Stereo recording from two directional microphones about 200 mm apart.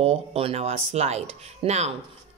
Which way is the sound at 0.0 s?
30° right (ahead or behind).